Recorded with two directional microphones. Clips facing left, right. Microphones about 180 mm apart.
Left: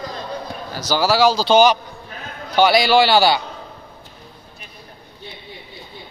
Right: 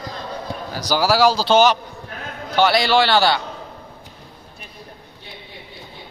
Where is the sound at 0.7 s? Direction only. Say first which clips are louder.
Even; 10° right (ahead or behind); by 3.4 s 5° left (ahead or behind).